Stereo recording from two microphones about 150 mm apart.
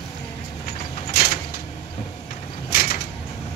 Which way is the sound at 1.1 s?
85° left.